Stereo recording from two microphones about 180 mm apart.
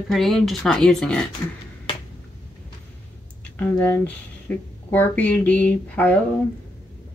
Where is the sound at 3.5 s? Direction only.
10° left (ahead or behind).